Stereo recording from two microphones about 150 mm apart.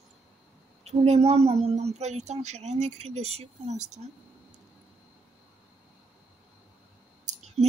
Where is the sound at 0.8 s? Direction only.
45° right (ahead or behind).